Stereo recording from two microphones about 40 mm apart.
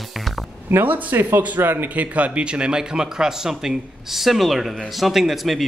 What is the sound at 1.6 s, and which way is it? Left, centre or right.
Speech, right.